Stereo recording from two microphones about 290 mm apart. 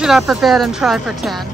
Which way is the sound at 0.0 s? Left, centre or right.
Centre.